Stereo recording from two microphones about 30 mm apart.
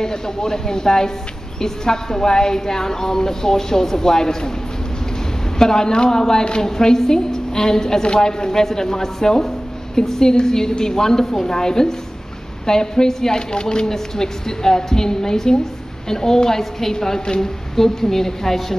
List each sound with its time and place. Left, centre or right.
0.0 s a woman's voice: left
5.6 s a woman's voice: left